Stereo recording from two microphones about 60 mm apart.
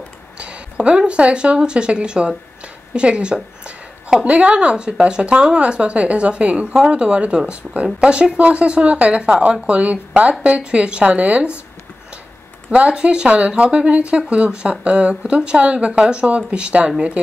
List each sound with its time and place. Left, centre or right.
0.4 s speech: centre
12.7 s speech: centre